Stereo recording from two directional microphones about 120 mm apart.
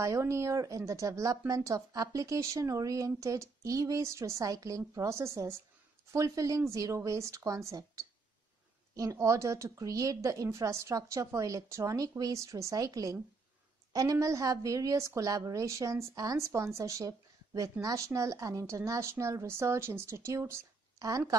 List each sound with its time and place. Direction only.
0.0 s a woman's voice: 25° right (ahead or behind)